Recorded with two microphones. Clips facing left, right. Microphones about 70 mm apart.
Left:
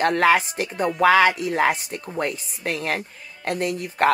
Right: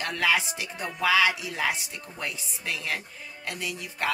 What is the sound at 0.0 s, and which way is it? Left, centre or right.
Speech, left.